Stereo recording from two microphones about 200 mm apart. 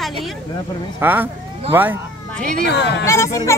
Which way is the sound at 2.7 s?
60° left (ahead or behind).